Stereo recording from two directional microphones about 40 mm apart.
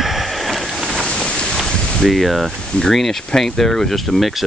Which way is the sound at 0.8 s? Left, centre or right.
Centre.